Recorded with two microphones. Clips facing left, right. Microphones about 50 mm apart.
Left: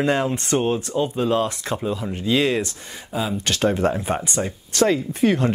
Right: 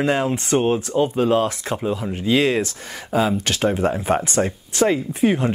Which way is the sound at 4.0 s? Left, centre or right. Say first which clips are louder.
Right 4 dB; right.